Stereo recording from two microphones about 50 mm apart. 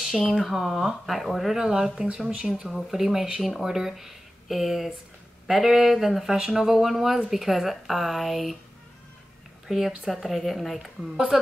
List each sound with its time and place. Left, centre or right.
0.3 s speech: centre
1.6 s speech: centre
9.7 s speech: centre